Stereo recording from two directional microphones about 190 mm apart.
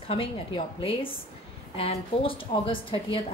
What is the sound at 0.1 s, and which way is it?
A woman's voice, 30° left (ahead or behind).